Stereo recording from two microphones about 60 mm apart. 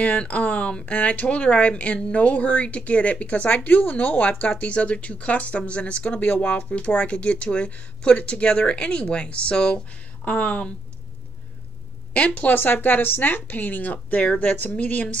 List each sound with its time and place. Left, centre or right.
0.0 s speech: left
12.1 s a woman's voice: left
12.5 s speech: left